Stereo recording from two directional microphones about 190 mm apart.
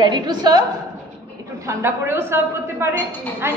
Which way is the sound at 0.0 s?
20° right (ahead or behind).